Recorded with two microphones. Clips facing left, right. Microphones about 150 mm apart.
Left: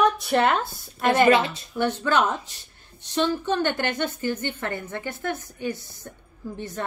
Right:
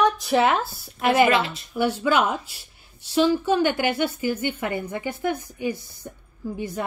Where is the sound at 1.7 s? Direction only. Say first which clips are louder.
Right 1 dB; 10° right (ahead or behind).